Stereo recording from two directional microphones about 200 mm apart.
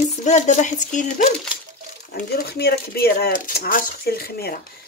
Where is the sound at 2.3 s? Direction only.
50° left (ahead or behind).